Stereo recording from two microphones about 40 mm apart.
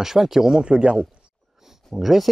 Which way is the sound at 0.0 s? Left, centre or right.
Centre.